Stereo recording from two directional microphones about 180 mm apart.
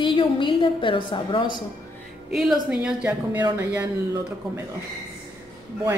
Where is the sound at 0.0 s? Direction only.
25° left (ahead or behind).